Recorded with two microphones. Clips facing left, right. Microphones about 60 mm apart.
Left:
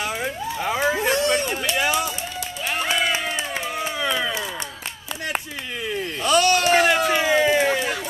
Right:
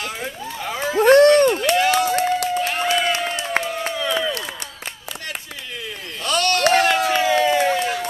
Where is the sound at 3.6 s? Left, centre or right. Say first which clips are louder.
Right 2 dB; centre.